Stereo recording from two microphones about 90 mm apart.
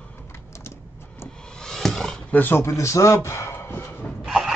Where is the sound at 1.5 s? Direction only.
5° left (ahead or behind); by 4.0 s 25° left (ahead or behind).